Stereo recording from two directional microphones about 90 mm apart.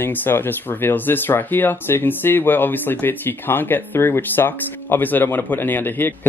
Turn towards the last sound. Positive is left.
turn(degrees=25)  # may be behind; listen again after turning